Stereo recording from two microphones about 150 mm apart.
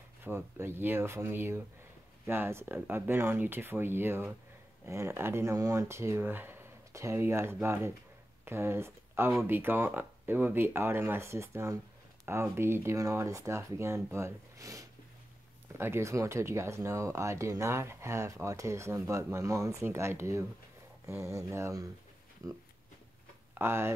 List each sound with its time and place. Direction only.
0.2 s speech: 15° right (ahead or behind)